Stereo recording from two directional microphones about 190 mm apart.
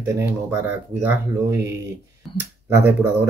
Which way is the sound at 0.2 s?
10° right (ahead or behind).